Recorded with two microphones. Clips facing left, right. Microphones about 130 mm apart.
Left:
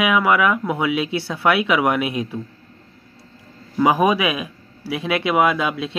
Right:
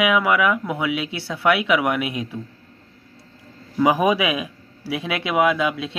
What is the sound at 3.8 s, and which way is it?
A man's voice, 15° right (ahead or behind).